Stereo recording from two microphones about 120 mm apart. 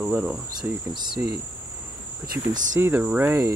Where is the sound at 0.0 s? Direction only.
10° right (ahead or behind).